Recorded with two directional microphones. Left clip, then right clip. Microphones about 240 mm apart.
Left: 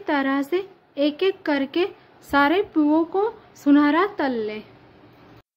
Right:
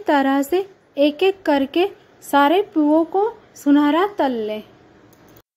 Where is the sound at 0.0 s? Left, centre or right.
Centre.